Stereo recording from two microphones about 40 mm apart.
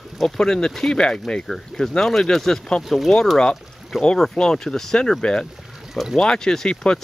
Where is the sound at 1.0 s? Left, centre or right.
Left.